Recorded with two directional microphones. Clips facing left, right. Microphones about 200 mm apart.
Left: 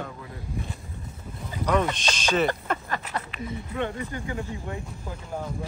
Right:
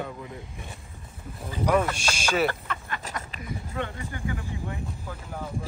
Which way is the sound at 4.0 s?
20° left (ahead or behind).